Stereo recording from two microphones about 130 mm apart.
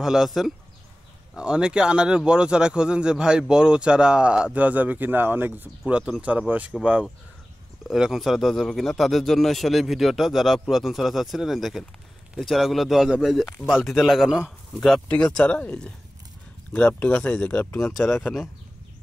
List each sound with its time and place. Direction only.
0.0 s a man's voice: 5° right (ahead or behind)